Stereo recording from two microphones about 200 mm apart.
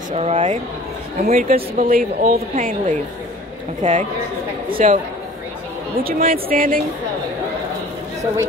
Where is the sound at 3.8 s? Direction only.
35° right (ahead or behind).